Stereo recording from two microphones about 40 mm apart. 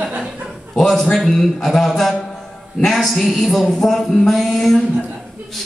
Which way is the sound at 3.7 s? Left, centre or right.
Centre.